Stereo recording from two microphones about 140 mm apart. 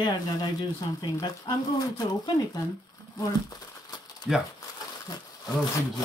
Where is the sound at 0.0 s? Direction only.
30° left (ahead or behind).